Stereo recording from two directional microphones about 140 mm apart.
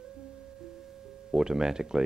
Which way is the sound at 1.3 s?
5° right (ahead or behind).